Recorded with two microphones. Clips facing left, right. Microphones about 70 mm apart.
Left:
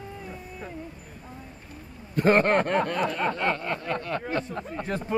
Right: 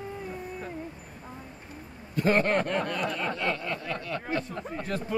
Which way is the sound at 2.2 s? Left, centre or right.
Left.